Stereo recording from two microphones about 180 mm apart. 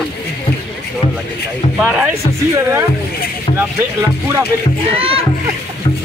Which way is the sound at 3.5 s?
15° right (ahead or behind).